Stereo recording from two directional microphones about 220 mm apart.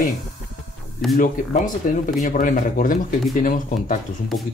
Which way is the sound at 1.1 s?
35° left (ahead or behind).